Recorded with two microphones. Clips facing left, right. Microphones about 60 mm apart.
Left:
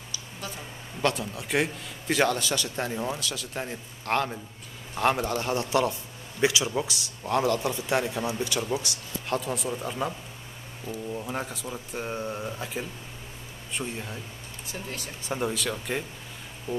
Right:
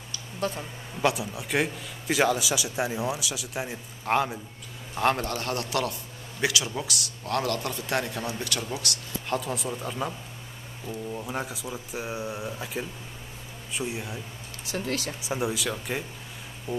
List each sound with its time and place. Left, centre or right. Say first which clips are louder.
1.0 s a man's voice: right 1 dB; centre
5.2 s a man's voice: left 2 dB; centre
9.3 s a man's voice: left 1 dB; centre
14.7 s speech: right 7 dB; right
15.2 s speech: left 1 dB; centre
16.7 s music: even; centre